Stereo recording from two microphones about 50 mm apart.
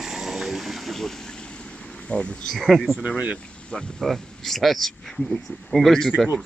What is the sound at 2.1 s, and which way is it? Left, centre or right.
Speech, left.